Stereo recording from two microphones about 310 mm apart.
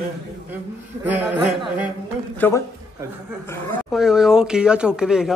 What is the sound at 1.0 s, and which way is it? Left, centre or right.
Speech, centre.